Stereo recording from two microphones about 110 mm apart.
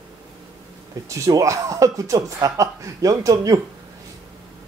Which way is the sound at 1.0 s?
30° right (ahead or behind).